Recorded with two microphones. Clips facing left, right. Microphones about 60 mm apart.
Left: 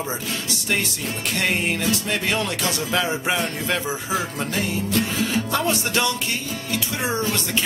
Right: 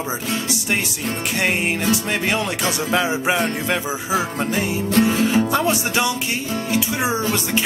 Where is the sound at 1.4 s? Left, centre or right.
Centre.